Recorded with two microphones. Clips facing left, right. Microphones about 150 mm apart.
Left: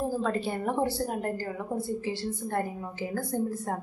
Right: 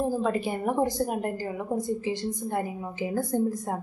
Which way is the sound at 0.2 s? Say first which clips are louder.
Right 2 dB; 15° right (ahead or behind).